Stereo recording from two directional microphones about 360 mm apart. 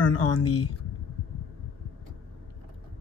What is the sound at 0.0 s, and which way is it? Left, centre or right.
Speech, left.